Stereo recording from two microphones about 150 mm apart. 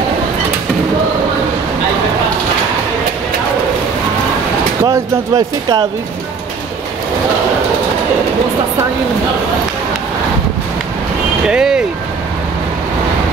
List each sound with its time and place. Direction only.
4.8 s speech: 20° right (ahead or behind)
11.4 s speech: 5° right (ahead or behind)